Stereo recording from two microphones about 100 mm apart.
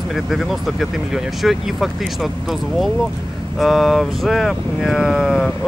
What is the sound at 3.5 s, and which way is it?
Speech, 5° right (ahead or behind).